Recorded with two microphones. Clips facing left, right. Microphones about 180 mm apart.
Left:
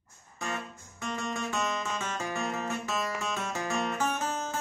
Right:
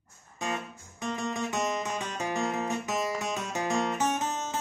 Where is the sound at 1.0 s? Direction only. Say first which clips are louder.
Right 2 dB; 20° right (ahead or behind).